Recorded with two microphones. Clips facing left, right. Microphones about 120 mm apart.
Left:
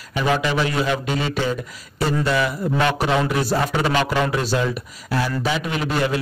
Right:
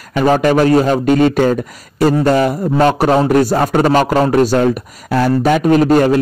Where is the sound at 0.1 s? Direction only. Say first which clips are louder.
Right 9 dB; 45° right (ahead or behind).